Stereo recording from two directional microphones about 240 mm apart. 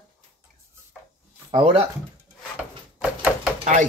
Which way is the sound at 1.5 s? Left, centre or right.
Right.